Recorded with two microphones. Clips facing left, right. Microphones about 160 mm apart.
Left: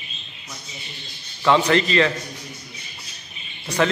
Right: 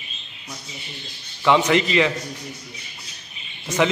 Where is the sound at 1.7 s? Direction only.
15° right (ahead or behind).